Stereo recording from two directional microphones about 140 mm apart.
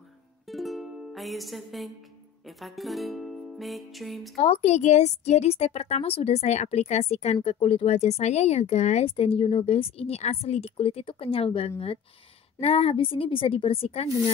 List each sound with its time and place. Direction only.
0.5 s music: centre (ahead or behind)
2.4 s speech: centre (ahead or behind)
4.4 s speech: 50° left (ahead or behind)